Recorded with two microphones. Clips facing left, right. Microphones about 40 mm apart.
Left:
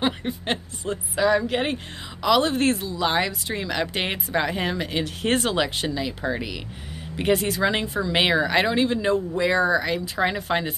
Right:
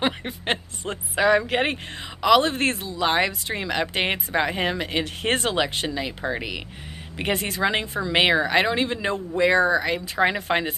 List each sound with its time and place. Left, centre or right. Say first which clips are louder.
0.3 s speech: even; right
7.2 s speech: left 3 dB; centre